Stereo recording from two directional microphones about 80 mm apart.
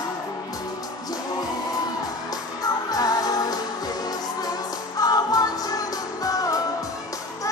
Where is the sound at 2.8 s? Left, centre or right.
Left.